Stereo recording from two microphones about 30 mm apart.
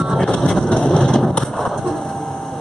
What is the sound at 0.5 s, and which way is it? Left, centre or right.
Vehicle, left.